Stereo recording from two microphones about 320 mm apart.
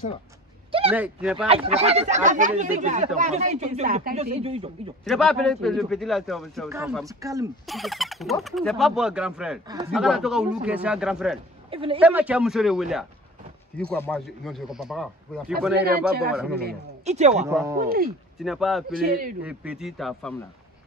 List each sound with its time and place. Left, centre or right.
0.7 s a sound: centre
0.9 s a man's voice: centre
1.5 s speech: centre
5.0 s a man's voice: centre
7.6 s a man's voice: centre
11.7 s speech: centre
12.0 s a man's voice: centre
15.8 s speech: right
17.5 s speech: centre
17.7 s speech: right
18.4 s a man's voice: centre
18.9 s speech: right
19.4 s a man's voice: centre